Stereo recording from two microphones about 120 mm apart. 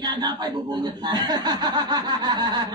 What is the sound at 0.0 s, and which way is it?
Speech, 35° right (ahead or behind).